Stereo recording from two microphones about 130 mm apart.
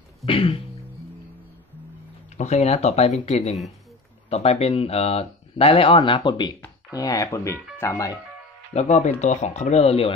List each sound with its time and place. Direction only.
0.2 s music: 45° left (ahead or behind)
2.3 s speech: 60° left (ahead or behind); by 8.0 s 20° left (ahead or behind)
8.7 s speech: 65° left (ahead or behind)